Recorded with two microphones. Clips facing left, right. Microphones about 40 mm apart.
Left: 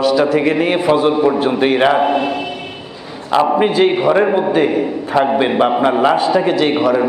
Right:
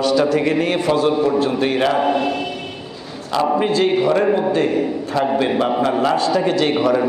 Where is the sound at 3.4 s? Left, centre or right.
Left.